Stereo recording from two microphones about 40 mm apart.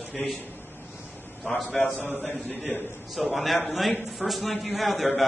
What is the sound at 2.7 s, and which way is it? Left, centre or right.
Speech, left.